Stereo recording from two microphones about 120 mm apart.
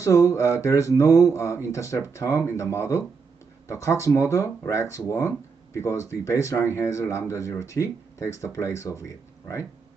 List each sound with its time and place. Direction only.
0.0 s speech: 25° left (ahead or behind)